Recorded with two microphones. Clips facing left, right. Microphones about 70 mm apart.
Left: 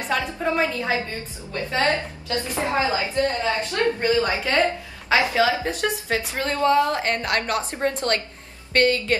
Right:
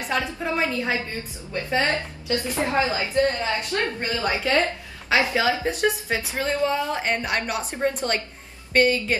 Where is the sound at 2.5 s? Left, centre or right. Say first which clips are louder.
Left 1 dB; left.